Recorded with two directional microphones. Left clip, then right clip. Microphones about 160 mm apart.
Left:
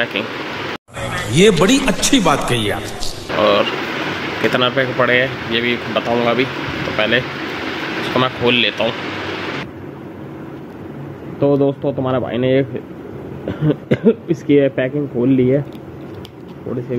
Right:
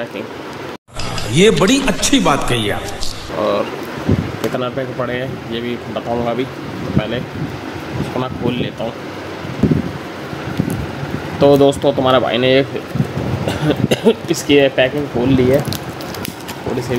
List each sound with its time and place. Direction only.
1.3 s speech: centre (ahead or behind)
3.3 s speech: 15° right (ahead or behind)
4.6 s speech: 5° right (ahead or behind)
11.3 s speech: 20° right (ahead or behind)
13.7 s speech: 15° left (ahead or behind)